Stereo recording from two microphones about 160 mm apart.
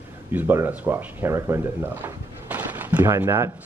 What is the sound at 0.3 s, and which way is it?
Speech, 10° right (ahead or behind).